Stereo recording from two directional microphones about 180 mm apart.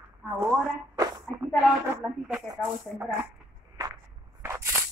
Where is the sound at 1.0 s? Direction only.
20° right (ahead or behind).